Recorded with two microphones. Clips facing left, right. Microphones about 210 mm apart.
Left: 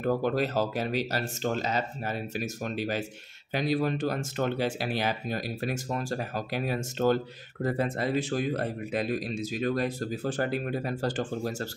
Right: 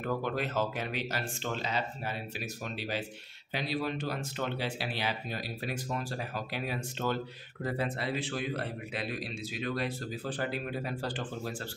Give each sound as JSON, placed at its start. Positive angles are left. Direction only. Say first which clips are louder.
{"t": 0.0, "sound": "a man's voice", "louder": "left 6 dB", "side_deg": 40}